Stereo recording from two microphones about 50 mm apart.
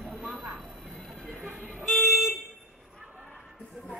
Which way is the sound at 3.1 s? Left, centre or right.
Centre.